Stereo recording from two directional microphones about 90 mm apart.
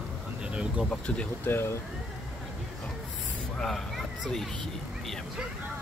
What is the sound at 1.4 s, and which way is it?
Speech, 25° left (ahead or behind).